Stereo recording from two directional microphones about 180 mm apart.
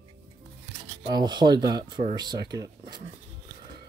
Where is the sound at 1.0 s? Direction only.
25° right (ahead or behind).